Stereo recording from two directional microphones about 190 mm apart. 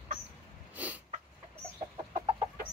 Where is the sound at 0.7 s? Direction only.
10° right (ahead or behind).